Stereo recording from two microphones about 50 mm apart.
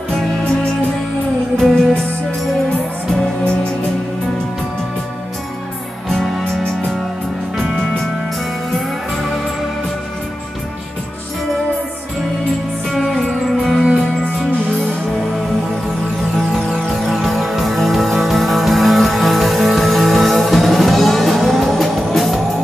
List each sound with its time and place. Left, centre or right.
1.6 s music: centre
6.0 s music: centre
7.8 s music: centre
12.9 s music: centre
14.2 s music: left
16.9 s music: centre